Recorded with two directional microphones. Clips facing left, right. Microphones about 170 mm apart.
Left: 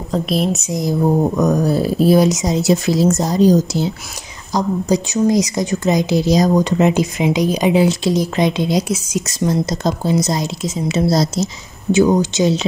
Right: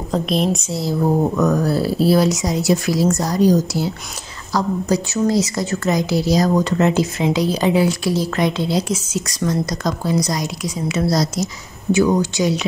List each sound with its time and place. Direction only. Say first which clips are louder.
0.1 s speech: left 1 dB; 5° left (ahead or behind)
0.7 s a woman's voice: left 2 dB; 15° left (ahead or behind)
9.2 s speech: left 3 dB; 25° left (ahead or behind)